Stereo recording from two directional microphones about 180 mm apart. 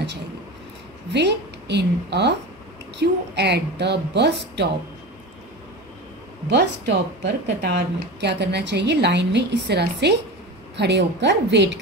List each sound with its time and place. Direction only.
1.1 s a woman's voice: 70° right (ahead or behind)
6.5 s a woman's voice: 70° right (ahead or behind)